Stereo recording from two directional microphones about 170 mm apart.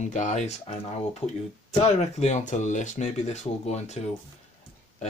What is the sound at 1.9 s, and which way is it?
Speech, 40° left (ahead or behind).